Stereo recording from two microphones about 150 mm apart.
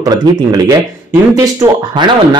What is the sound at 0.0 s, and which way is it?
Speech, 25° right (ahead or behind).